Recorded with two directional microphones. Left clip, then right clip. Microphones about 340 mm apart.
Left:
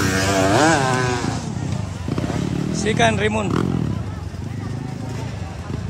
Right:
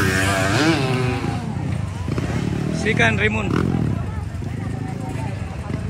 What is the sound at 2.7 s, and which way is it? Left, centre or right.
Speech, centre.